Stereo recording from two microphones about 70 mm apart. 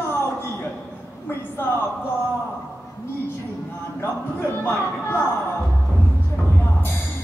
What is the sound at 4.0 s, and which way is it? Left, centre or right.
Speech, left.